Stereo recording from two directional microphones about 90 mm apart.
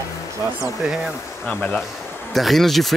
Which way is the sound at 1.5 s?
15° left (ahead or behind).